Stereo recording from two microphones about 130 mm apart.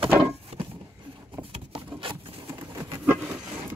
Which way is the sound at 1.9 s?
45° right (ahead or behind).